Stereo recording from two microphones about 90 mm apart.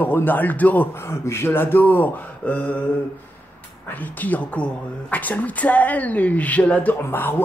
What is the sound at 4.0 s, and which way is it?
Speech, 20° left (ahead or behind).